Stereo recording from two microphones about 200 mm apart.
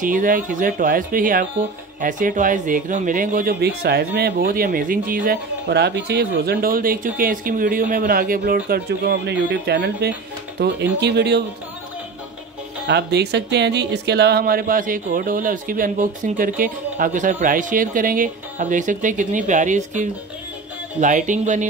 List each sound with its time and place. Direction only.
0.0 s speech: 40° right (ahead or behind)
12.8 s speech: 55° right (ahead or behind); by 21.6 s 40° right (ahead or behind)